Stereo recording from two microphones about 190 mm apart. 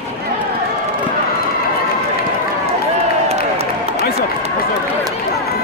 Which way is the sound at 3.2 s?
35° right (ahead or behind).